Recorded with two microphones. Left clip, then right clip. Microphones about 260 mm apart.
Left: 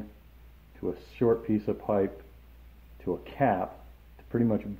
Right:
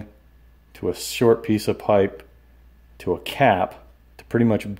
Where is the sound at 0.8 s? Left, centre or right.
Right.